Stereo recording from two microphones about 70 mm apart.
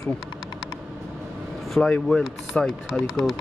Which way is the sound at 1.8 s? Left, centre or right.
Centre.